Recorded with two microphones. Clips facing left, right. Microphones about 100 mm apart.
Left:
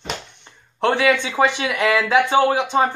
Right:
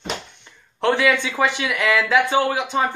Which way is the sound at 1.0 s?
25° left (ahead or behind).